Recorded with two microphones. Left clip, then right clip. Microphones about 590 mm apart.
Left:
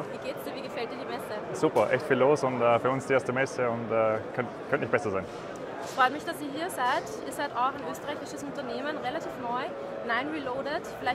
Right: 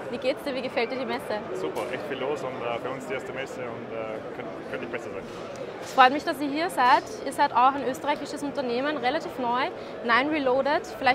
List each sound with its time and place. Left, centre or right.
0.2 s a woman's voice: right
1.6 s speech: left
5.9 s a woman's voice: right